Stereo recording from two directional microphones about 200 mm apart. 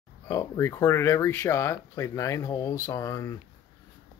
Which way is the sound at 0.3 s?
15° left (ahead or behind).